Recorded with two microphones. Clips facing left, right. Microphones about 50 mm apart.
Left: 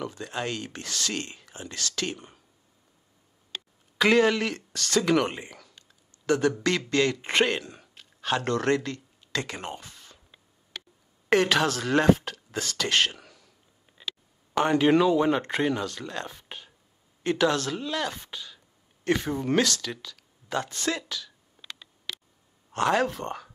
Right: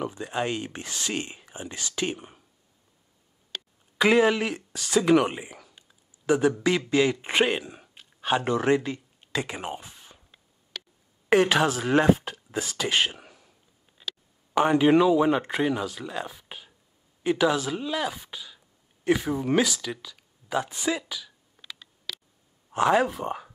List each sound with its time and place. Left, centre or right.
0.0 s speech: centre
4.0 s speech: centre
11.2 s speech: centre
14.5 s speech: centre
22.7 s speech: centre